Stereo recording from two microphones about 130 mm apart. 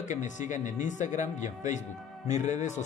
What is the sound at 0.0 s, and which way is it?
Speech, 70° left (ahead or behind).